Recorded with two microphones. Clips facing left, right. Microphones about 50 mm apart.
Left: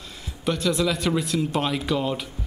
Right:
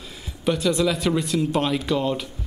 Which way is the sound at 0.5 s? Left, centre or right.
Centre.